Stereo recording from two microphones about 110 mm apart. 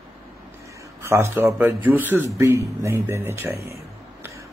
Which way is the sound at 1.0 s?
25° right (ahead or behind).